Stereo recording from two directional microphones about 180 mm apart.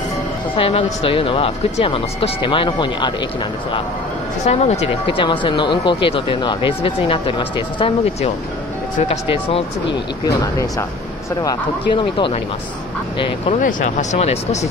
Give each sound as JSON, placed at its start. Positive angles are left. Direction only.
{"t": 0.6, "sound": "speech", "side_deg": 30}
{"t": 4.5, "sound": "speech", "side_deg": 35}
{"t": 10.2, "sound": "speech", "side_deg": 15}
{"t": 13.6, "sound": "speech", "side_deg": 45}